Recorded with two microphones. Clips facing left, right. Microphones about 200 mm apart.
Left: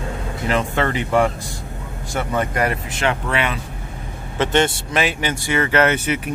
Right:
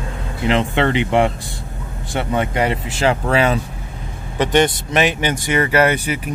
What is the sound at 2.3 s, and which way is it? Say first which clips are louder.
Speech: right 2 dB; 20° right (ahead or behind).